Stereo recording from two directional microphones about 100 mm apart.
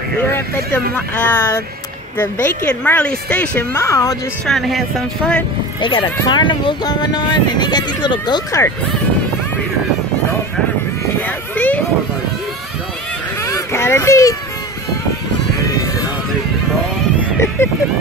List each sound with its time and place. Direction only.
0.3 s a woman's voice: 20° left (ahead or behind)
3.7 s speech: 30° left (ahead or behind)
4.5 s speech: centre (ahead or behind)
5.8 s speech: 60° left (ahead or behind)
8.5 s speech: 30° left (ahead or behind)
11.1 s children playing: 15° left (ahead or behind)
13.5 s children playing: 25° left (ahead or behind)
17.6 s speech: 25° left (ahead or behind)